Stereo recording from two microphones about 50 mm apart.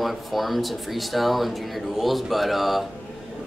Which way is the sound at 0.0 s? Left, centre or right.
Centre.